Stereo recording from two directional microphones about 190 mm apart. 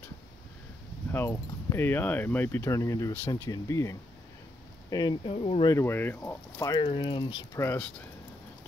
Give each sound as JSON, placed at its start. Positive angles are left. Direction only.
{"t": 1.1, "sound": "speech", "side_deg": 15}